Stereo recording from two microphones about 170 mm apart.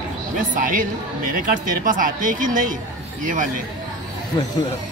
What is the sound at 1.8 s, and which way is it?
Speech, 50° right (ahead or behind).